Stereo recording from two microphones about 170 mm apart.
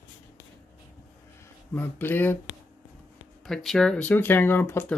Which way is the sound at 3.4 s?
Centre (ahead or behind).